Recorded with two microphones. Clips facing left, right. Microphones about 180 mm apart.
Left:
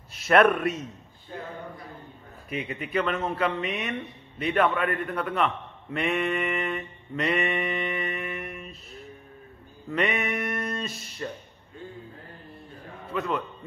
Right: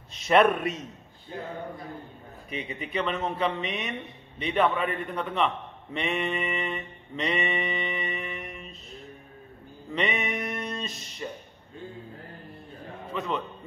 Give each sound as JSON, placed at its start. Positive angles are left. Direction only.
{"t": 0.1, "sound": "a man's voice", "side_deg": 0}
{"t": 2.5, "sound": "a man's voice", "side_deg": 5}
{"t": 5.9, "sound": "a sound", "side_deg": 0}
{"t": 9.9, "sound": "music", "side_deg": 0}
{"t": 13.1, "sound": "a man's voice", "side_deg": 0}